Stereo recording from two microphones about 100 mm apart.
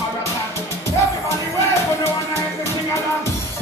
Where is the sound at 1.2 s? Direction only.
30° left (ahead or behind).